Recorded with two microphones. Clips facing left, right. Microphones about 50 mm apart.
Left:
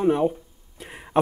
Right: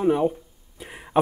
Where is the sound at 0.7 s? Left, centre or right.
Centre.